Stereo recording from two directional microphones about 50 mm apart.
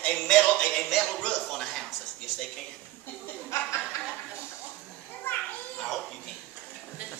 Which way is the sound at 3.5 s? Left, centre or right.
Left.